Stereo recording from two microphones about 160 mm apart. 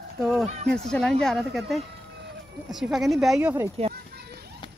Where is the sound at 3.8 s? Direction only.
40° right (ahead or behind).